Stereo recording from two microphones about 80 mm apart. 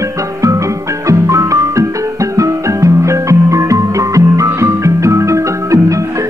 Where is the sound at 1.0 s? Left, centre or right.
Right.